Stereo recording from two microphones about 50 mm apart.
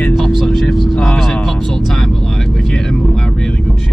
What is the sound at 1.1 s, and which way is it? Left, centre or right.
Music, centre.